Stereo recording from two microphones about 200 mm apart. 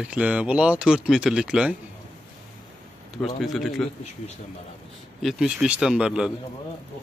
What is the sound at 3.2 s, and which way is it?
Speech, centre (ahead or behind).